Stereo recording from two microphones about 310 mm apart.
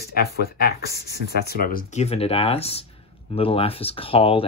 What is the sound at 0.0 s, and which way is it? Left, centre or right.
Speech, left.